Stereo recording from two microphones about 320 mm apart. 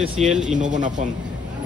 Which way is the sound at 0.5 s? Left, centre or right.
Right.